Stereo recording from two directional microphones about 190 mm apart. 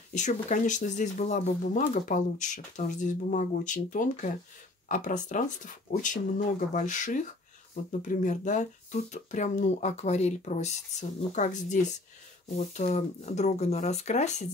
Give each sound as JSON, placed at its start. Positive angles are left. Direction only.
{"t": 0.1, "sound": "speech", "side_deg": 40}